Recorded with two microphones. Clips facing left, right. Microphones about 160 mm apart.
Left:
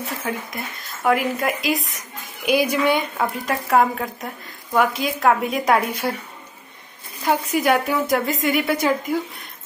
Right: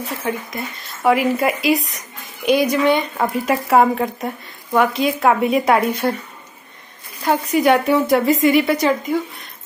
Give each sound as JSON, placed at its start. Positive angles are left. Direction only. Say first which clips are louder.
{"t": 0.2, "sound": "a woman's voice", "louder": "right 3 dB", "side_deg": 0}
{"t": 7.2, "sound": "a woman's voice", "louder": "right 4 dB", "side_deg": 0}